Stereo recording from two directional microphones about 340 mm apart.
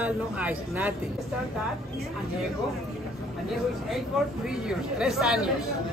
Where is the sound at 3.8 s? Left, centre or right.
Centre.